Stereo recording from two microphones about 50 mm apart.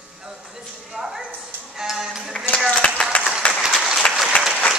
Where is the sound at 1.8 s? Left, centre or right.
Centre.